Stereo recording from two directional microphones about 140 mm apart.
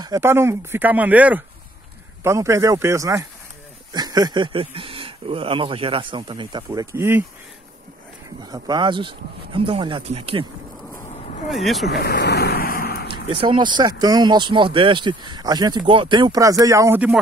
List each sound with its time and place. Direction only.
0.0 s speech: 20° right (ahead or behind)
8.4 s speech: 30° right (ahead or behind); by 10.4 s 45° right (ahead or behind)
11.1 s vehicle: 50° left (ahead or behind)
11.5 s speech: centre (ahead or behind)
12.0 s vehicle: 90° left
13.1 s speech: 40° right (ahead or behind); by 17.0 s 20° right (ahead or behind)